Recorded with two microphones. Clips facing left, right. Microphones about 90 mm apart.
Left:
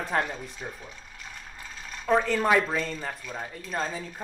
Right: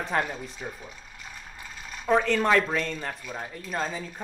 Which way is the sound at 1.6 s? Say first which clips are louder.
Even; 5° right (ahead or behind).